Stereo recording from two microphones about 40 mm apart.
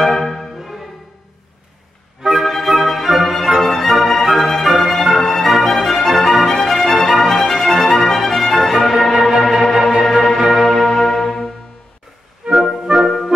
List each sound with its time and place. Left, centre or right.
0.0 s music: centre
2.3 s music: centre
10.5 s church bell: centre
10.9 s music: centre
12.4 s music: right